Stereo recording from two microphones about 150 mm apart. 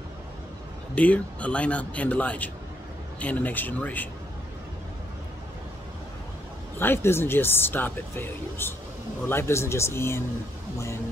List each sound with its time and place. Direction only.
0.9 s speech: 10° left (ahead or behind)
6.8 s speech: 15° left (ahead or behind)